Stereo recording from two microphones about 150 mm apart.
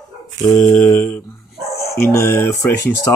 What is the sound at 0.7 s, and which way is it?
Speech, 10° left (ahead or behind).